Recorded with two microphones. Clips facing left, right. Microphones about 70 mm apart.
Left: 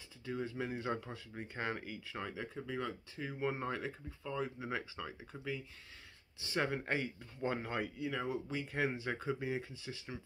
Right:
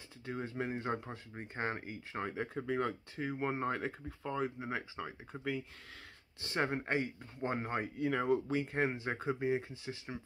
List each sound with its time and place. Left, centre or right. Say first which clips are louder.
0.2 s speech: right 1 dB; right
1.5 s speech: right 2 dB; right
6.4 s speech: right 1 dB; right
7.6 s speech: right 2 dB; right
8.0 s speech: right 6 dB; right
8.8 s speech: right 2 dB; right